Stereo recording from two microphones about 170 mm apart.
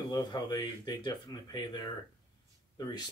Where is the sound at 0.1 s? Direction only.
25° left (ahead or behind).